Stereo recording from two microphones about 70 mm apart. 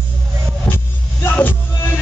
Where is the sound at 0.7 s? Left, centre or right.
Left.